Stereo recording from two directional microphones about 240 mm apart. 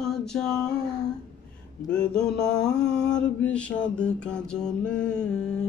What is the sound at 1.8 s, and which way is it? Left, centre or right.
Mantra, centre.